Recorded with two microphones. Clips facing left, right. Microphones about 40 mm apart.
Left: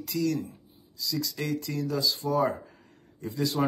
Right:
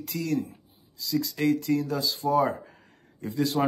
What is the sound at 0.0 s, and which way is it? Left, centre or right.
Speech, right.